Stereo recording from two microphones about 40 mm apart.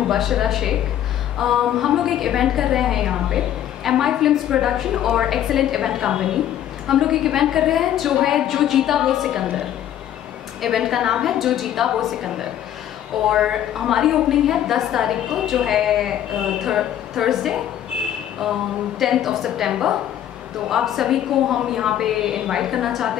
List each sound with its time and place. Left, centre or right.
0.1 s a woman's voice: centre
10.6 s a woman's voice: centre
18.9 s a woman's voice: centre